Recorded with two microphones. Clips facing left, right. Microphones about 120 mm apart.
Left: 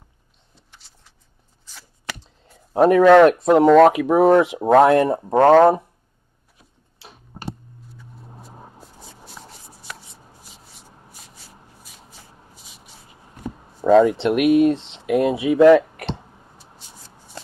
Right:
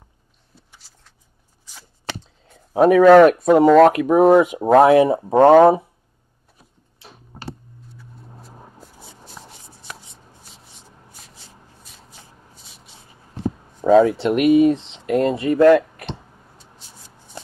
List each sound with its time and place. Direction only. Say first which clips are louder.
0.6 s a sound: right 1 dB; 5° right (ahead or behind)
2.4 s speech: right 1 dB; centre (ahead or behind)
7.0 s tick-tock: left 1 dB; 20° left (ahead or behind)
8.0 s vehicle: left 1 dB; centre (ahead or behind)
8.8 s shuffling cards: even; centre (ahead or behind)
11.1 s shuffle: even; 5° left (ahead or behind)
12.5 s a sound: left 1 dB; centre (ahead or behind)
13.7 s speech: even; centre (ahead or behind)